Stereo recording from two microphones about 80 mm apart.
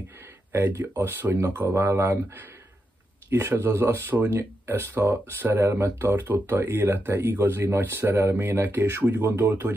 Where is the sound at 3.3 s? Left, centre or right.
Right.